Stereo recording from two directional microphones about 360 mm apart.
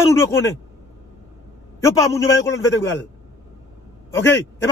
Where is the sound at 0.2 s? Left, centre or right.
Centre.